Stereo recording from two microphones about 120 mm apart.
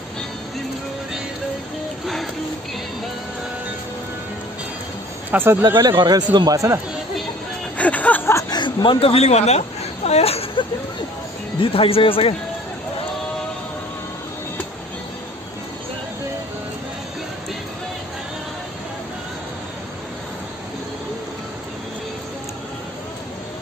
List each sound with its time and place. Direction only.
5.3 s speech: 20° right (ahead or behind)
5.8 s speech: 35° right (ahead or behind)
7.7 s music: 10° left (ahead or behind)
8.4 s speech: 35° left (ahead or behind); by 10.4 s 60° left (ahead or behind)
11.6 s speech: 50° left (ahead or behind)